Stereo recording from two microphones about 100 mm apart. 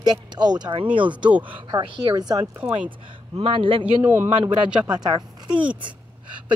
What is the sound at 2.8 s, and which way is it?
A woman's voice, 60° right (ahead or behind).